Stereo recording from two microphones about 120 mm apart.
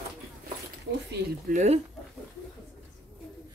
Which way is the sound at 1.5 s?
65° right (ahead or behind).